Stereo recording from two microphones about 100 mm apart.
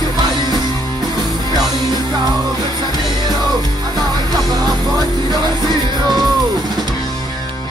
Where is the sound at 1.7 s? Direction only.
40° right (ahead or behind).